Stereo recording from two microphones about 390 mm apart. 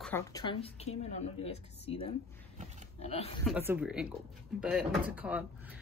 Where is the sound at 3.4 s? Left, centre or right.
Centre.